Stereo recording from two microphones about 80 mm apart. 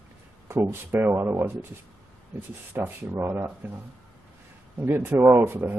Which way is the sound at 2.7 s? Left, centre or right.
Right.